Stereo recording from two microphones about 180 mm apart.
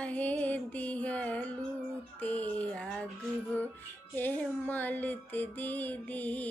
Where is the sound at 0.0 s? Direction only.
10° left (ahead or behind).